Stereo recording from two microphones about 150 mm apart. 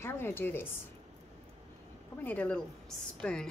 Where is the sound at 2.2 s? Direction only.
10° left (ahead or behind).